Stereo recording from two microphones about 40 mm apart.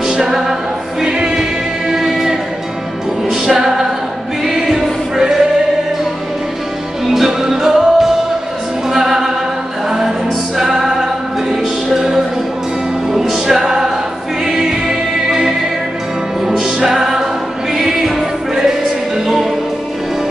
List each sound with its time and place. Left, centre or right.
0.0 s music: centre
1.0 s choir: right
1.3 s music: centre
3.4 s music: centre
4.6 s choir: centre
7.1 s music: centre
13.1 s music: centre